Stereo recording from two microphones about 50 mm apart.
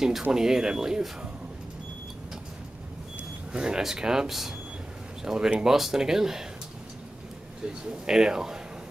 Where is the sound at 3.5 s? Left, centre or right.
Centre.